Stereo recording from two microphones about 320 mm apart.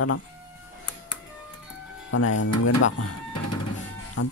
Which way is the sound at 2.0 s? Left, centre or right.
Left.